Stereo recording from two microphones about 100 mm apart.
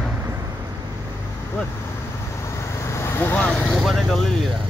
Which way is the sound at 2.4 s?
30° left (ahead or behind).